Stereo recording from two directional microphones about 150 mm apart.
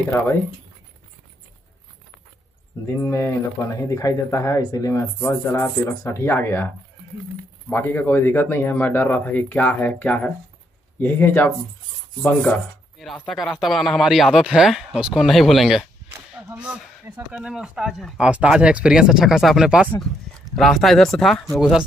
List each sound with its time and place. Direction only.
3.0 s speech: 15° left (ahead or behind)
7.7 s speech: 15° left (ahead or behind); by 15.9 s centre (ahead or behind)
16.1 s a sound: 10° right (ahead or behind)
17.3 s speech: 5° right (ahead or behind)